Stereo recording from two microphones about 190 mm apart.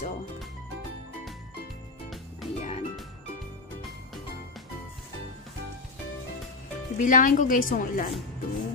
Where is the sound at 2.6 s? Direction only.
35° left (ahead or behind).